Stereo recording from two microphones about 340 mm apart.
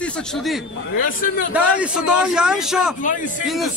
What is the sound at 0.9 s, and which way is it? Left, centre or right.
Speech, left.